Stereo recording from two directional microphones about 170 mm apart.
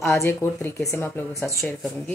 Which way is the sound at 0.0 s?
15° left (ahead or behind).